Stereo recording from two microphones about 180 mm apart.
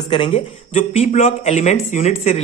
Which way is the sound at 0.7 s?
35° left (ahead or behind).